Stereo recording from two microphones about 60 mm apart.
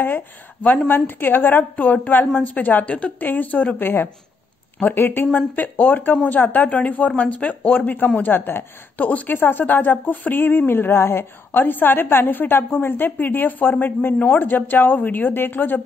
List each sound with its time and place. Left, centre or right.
0.0 s a woman's voice: left